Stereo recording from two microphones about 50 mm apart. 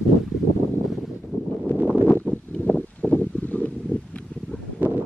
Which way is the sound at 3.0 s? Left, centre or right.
Left.